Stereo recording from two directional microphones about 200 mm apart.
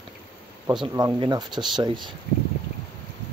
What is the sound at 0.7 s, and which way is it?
Speech, 20° right (ahead or behind).